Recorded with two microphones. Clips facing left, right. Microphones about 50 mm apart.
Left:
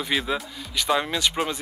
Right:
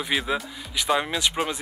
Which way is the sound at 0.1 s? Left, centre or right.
Centre.